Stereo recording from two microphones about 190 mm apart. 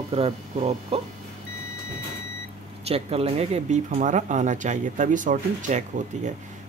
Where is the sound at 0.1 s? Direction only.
30° right (ahead or behind).